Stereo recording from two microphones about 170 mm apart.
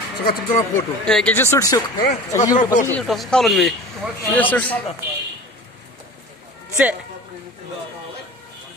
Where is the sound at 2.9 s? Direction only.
Centre (ahead or behind).